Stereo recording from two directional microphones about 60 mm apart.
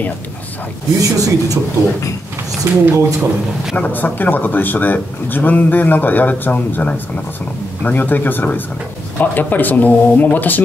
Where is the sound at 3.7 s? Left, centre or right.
Left.